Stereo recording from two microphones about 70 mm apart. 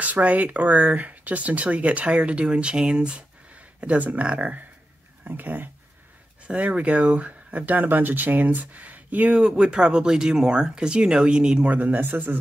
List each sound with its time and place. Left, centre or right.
0.0 s speech: right